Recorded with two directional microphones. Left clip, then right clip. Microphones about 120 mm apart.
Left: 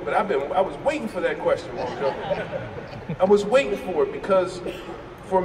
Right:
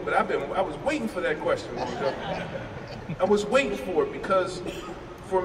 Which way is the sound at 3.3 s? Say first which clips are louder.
Left 4 dB; 75° left (ahead or behind).